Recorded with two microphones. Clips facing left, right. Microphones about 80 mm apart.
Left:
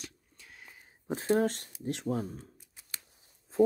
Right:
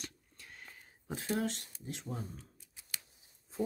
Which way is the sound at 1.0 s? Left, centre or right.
Left.